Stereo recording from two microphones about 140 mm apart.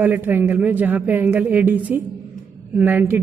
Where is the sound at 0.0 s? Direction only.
15° right (ahead or behind).